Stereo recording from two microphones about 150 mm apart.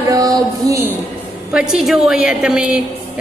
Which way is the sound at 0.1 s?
25° right (ahead or behind).